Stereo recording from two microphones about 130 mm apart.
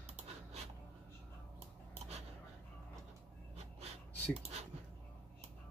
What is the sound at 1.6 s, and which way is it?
Scissors, 55° right (ahead or behind).